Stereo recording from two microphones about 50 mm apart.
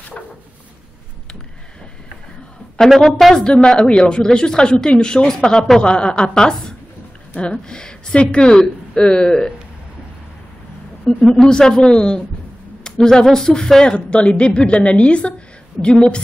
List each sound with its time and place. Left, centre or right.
3.0 s a woman's voice: centre
3.4 s a woman's voice: centre
11.1 s speech: centre
13.8 s a woman's voice: left